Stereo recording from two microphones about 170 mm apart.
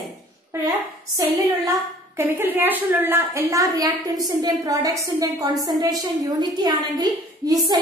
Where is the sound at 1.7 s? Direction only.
15° right (ahead or behind).